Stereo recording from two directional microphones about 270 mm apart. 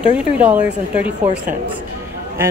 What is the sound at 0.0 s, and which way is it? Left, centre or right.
A woman's voice, centre.